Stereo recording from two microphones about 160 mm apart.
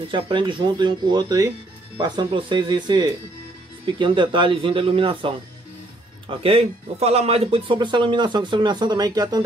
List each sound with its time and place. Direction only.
0.1 s speech: 30° right (ahead or behind)